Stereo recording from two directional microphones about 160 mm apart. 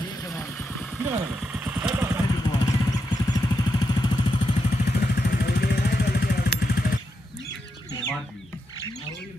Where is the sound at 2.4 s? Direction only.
25° left (ahead or behind).